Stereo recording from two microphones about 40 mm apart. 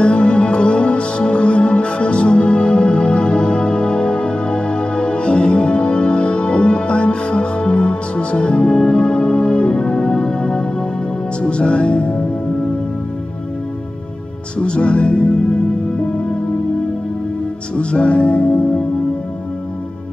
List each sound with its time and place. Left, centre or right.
0.0 s music: left
14.6 s music: left
17.7 s music: left